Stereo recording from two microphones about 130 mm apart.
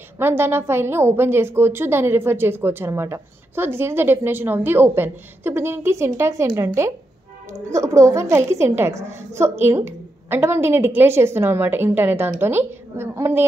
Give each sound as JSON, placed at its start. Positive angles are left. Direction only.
{"t": 0.2, "sound": "a woman's voice", "side_deg": -15}